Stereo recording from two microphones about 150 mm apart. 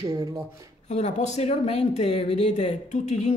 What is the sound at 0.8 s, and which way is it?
Speech, 50° left (ahead or behind).